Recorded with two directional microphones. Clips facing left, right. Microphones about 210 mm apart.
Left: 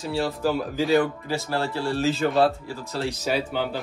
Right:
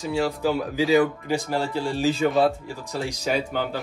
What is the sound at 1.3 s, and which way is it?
Speech, 15° right (ahead or behind).